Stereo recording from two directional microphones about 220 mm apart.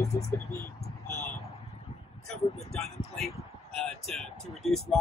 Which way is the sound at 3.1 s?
Centre (ahead or behind).